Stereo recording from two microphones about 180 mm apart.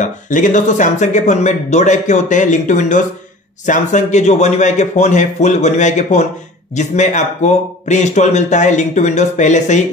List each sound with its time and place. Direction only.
0.0 s speech: 45° left (ahead or behind)